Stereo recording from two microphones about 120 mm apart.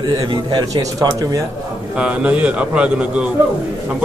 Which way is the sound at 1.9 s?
10° right (ahead or behind).